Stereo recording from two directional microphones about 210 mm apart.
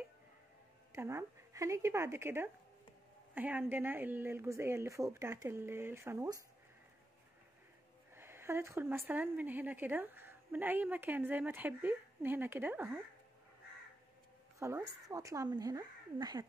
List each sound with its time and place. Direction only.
0.9 s a woman's voice: 15° right (ahead or behind)
8.1 s a woman's voice: 10° right (ahead or behind)
14.6 s a woman's voice: 15° right (ahead or behind)